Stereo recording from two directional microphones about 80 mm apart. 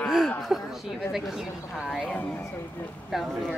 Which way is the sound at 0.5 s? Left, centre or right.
Centre.